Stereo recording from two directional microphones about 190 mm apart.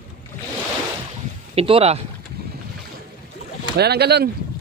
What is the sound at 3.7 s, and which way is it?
Speech, 60° right (ahead or behind).